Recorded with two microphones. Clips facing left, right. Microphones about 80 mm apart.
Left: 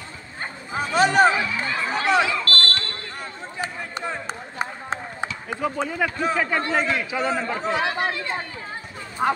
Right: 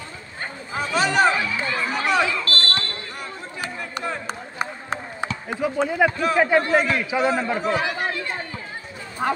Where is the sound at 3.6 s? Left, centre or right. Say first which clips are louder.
Left 1 dB; left.